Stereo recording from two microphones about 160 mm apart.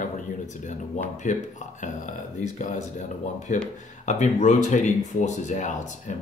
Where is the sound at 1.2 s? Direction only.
50° left (ahead or behind).